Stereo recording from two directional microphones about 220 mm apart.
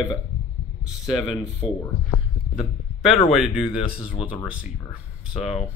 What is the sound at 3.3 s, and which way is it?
Speech, 5° right (ahead or behind).